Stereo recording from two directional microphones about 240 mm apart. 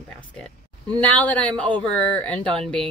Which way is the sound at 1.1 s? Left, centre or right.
Centre.